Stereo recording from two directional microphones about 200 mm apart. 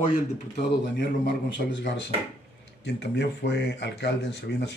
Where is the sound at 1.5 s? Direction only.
60° left (ahead or behind).